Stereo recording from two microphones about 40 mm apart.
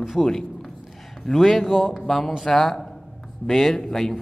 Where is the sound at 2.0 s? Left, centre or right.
Centre.